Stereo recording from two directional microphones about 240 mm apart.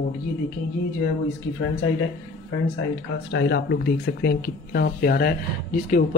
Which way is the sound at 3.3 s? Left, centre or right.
Left.